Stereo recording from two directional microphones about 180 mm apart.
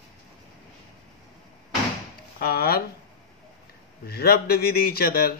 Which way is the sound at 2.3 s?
55° left (ahead or behind).